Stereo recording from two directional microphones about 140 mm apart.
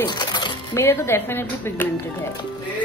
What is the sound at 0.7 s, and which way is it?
A woman's voice, 15° left (ahead or behind).